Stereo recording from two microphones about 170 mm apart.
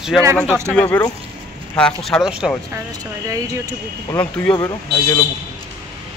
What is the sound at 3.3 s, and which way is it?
Speech, 20° right (ahead or behind).